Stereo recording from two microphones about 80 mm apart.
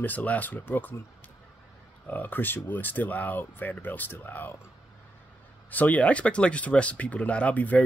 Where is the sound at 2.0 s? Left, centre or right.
Left.